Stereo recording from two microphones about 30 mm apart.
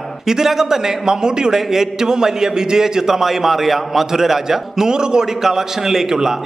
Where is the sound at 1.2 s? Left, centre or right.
Right.